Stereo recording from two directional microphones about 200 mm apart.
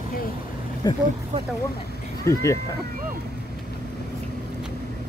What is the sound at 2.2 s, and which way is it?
Speech, 15° left (ahead or behind).